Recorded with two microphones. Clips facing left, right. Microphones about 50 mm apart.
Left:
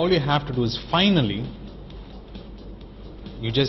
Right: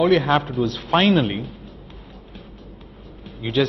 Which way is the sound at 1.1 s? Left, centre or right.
Centre.